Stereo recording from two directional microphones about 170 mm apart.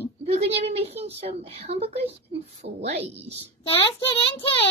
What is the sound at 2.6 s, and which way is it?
Speech, 80° right.